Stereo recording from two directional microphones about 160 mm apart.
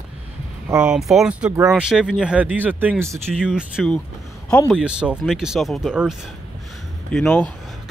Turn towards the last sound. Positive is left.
turn(degrees=10)  # may be behind; listen again after turning